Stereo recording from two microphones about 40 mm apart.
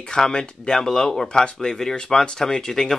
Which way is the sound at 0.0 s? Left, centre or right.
Centre.